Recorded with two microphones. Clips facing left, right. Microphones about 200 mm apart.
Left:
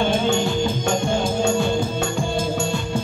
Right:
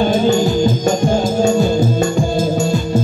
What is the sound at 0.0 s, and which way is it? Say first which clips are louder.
Music: right 6 dB; 40° right (ahead or behind).